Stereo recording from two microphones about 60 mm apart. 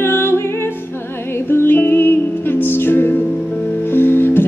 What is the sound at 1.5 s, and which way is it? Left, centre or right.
Music, left.